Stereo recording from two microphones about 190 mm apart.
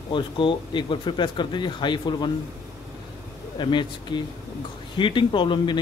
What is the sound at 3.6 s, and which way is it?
Speech, 25° left (ahead or behind).